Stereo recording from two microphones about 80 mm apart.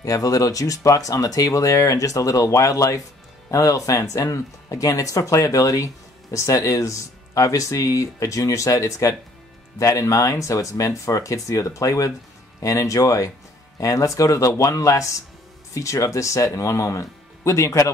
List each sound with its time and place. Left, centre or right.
0.0 s speech: left